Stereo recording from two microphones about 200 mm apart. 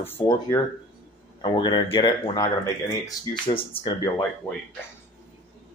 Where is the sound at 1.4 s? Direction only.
20° left (ahead or behind).